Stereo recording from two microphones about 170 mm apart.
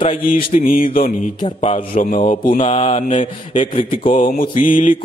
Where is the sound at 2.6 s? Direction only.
35° left (ahead or behind).